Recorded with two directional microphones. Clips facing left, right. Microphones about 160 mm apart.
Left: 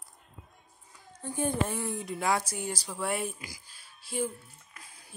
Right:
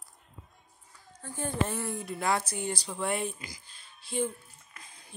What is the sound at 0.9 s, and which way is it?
A woman's voice, 15° left (ahead or behind).